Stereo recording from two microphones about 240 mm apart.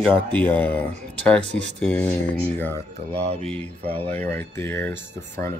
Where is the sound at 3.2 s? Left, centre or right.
Right.